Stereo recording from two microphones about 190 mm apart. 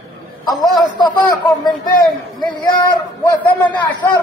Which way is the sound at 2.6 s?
20° left (ahead or behind).